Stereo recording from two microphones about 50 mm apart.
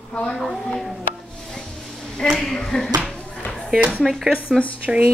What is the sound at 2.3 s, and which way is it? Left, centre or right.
Speech, centre.